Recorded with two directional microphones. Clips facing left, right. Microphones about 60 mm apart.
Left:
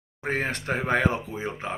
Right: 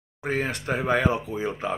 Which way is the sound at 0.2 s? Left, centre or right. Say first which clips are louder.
Right 1 dB; left.